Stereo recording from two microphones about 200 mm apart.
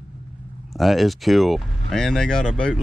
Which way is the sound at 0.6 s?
Centre (ahead or behind).